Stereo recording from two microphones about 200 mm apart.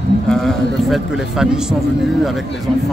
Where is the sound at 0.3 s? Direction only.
Centre (ahead or behind).